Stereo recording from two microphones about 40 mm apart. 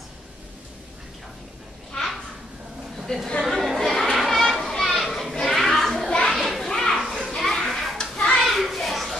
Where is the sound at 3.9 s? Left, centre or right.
Centre.